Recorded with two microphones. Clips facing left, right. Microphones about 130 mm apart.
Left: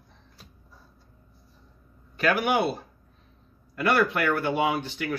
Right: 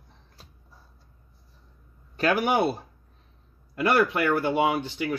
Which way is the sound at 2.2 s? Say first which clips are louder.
Right 1 dB; 35° right (ahead or behind).